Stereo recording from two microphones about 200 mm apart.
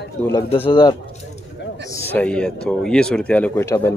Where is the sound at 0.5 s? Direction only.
25° left (ahead or behind).